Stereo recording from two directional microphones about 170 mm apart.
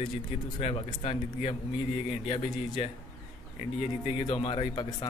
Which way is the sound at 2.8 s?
40° left (ahead or behind).